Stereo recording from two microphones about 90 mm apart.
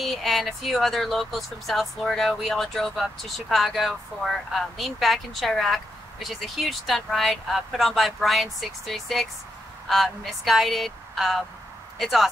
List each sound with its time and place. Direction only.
0.0 s speech: centre (ahead or behind)